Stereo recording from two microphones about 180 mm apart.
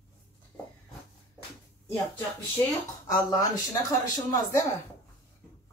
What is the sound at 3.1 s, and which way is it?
Speech, 20° left (ahead or behind).